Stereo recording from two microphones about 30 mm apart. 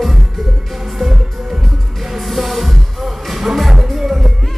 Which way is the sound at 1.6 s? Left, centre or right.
Centre.